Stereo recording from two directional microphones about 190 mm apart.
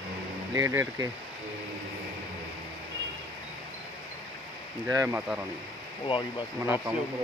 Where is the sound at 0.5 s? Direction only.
15° right (ahead or behind).